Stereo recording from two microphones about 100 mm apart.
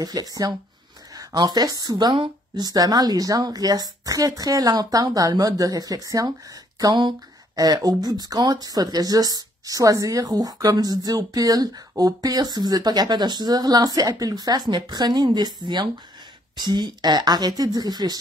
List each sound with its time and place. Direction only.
0.0 s speech: 40° right (ahead or behind)
6.8 s speech: 50° right (ahead or behind)